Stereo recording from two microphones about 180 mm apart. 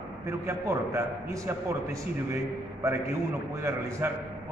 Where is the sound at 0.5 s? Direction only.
15° right (ahead or behind).